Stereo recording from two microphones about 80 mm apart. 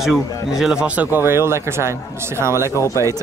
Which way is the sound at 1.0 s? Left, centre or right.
Right.